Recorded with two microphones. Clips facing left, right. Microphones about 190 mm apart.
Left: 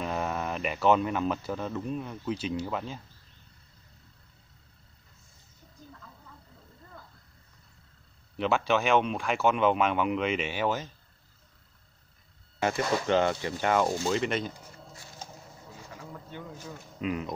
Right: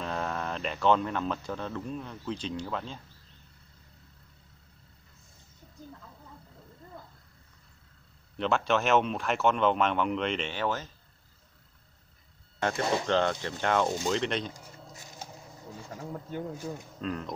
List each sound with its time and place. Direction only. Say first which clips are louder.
0.0 s speech: left 2 dB; 10° left (ahead or behind)
8.4 s speech: left 1 dB; centre (ahead or behind)
12.5 s speech: left 1 dB; 5° left (ahead or behind)
16.1 s speech: right 7 dB; 35° right (ahead or behind)
17.0 s speech: left 3 dB; 10° left (ahead or behind)